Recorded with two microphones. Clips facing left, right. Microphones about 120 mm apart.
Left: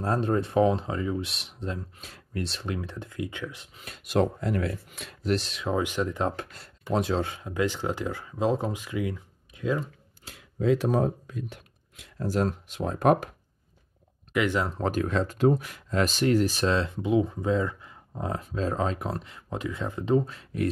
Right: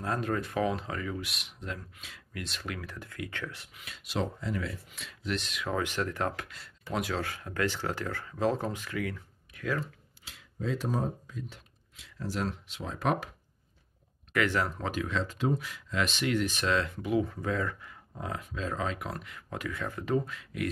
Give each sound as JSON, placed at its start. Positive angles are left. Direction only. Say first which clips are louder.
{"t": 0.0, "sound": "speech", "louder": "left 6 dB", "side_deg": 30}
{"t": 2.0, "sound": "speech", "louder": "left 8 dB", "side_deg": 40}
{"t": 3.7, "sound": "speech", "louder": "left 9 dB", "side_deg": 45}
{"t": 5.8, "sound": "speech", "louder": "left 4 dB", "side_deg": 15}
{"t": 10.2, "sound": "speech", "louder": "left 10 dB", "side_deg": 60}
{"t": 14.3, "sound": "speech", "louder": "left 3 dB", "side_deg": 20}
{"t": 14.8, "sound": "speech", "louder": "left 6 dB", "side_deg": 40}